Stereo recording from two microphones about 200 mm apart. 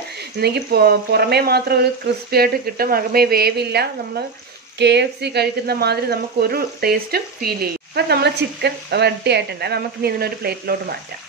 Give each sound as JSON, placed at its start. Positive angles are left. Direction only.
{"t": 0.4, "sound": "speech", "side_deg": -55}